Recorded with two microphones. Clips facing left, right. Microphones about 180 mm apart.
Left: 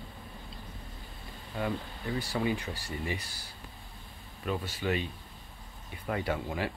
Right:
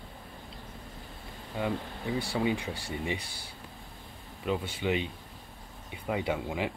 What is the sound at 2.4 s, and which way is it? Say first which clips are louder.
Speech: right 1 dB; 15° right (ahead or behind).